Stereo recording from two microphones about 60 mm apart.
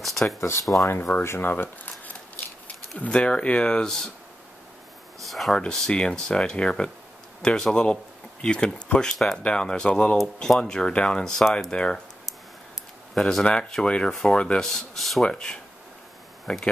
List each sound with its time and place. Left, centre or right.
0.0 s a sound: centre
0.4 s speech: left
1.1 s speech: centre
1.4 s speech: left
3.1 s speech: centre
5.3 s speech: centre
5.6 s speech: centre
13.1 s speech: centre
15.2 s speech: centre